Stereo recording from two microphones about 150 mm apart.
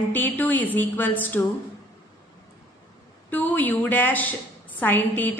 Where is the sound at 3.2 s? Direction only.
10° left (ahead or behind).